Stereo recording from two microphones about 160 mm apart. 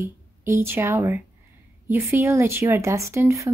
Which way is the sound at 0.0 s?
15° right (ahead or behind).